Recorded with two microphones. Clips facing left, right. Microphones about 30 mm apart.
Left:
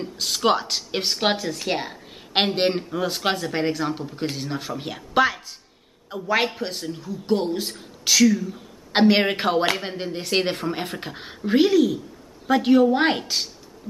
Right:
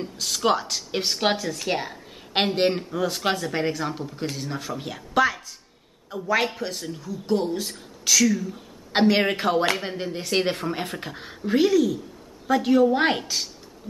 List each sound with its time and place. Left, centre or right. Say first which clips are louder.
0.0 s speech: left 2 dB; centre
1.0 s speech: left 1 dB; centre
8.3 s a man's voice: left 3 dB; centre
11.1 s speech: left 3 dB; left